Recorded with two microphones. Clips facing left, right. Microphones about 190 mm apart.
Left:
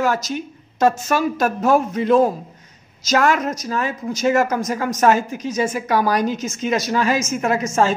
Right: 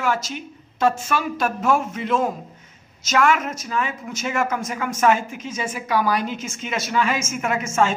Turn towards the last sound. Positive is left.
turn(degrees=35)  # may be behind; listen again after turning